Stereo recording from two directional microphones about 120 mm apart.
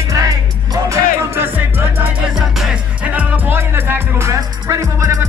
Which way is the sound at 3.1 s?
15° right (ahead or behind).